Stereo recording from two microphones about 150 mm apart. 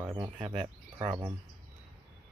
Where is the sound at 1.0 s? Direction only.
15° right (ahead or behind).